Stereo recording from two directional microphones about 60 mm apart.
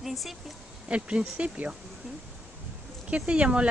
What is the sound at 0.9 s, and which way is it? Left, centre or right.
Speech, right.